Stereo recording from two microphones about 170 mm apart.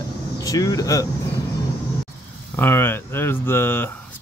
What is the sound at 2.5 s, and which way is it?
Speech, 15° left (ahead or behind).